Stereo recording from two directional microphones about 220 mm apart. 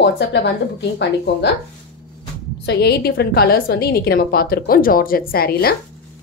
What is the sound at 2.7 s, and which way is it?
A woman's voice, 45° left (ahead or behind).